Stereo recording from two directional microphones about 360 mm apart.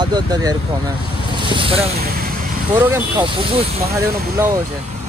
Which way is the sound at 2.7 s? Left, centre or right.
Centre.